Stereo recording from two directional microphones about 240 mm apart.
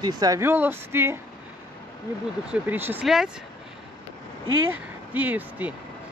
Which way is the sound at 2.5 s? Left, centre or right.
Centre.